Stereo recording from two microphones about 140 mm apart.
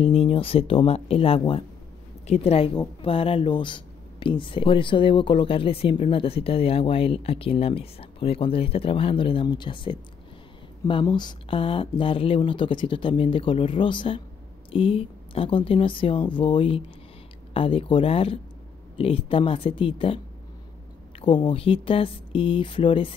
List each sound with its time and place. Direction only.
0.0 s speech: 45° left (ahead or behind)
21.2 s speech: 35° left (ahead or behind)